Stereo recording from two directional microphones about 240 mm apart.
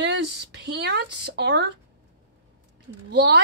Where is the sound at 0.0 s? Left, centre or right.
Right.